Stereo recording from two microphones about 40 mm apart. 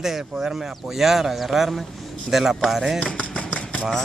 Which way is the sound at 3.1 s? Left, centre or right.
Left.